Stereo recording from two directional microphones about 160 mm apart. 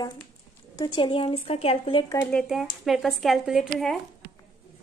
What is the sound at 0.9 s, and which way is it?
A woman's voice, 35° left (ahead or behind).